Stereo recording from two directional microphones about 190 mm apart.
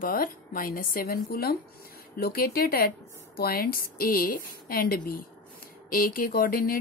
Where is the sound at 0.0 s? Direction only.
50° left (ahead or behind).